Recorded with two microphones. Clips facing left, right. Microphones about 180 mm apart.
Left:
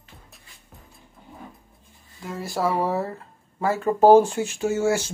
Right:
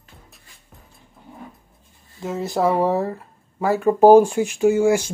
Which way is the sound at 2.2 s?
20° right (ahead or behind).